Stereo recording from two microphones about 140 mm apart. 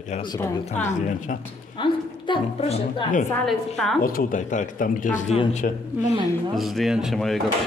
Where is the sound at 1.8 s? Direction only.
35° left (ahead or behind).